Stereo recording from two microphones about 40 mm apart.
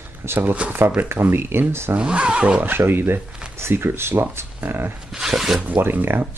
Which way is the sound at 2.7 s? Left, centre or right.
Right.